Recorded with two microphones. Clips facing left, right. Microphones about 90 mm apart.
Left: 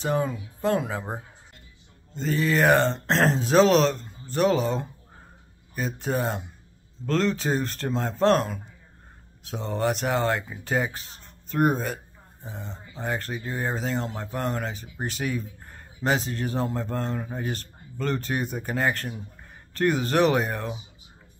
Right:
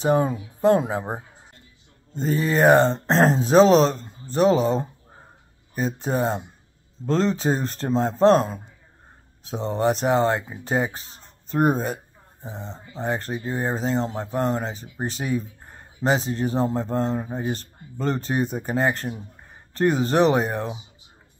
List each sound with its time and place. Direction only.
0.0 s speech: 35° right (ahead or behind)
6.1 s speech: 30° right (ahead or behind)
9.6 s speech: 30° right (ahead or behind)
13.0 s speech: 25° right (ahead or behind)